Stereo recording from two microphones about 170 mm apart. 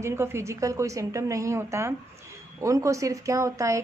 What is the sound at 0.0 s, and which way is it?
Speech, 15° right (ahead or behind).